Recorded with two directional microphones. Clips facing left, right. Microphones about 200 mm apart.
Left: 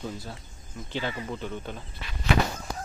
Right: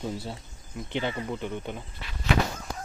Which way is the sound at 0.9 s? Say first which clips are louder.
Right 2 dB; 20° right (ahead or behind).